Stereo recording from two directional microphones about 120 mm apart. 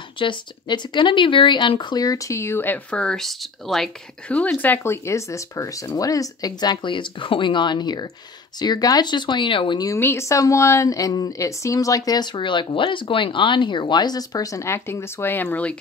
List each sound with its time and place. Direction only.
0.2 s speech: 40° left (ahead or behind)
9.8 s speech: 20° left (ahead or behind)